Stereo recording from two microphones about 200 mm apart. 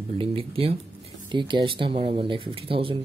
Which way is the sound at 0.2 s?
30° right (ahead or behind).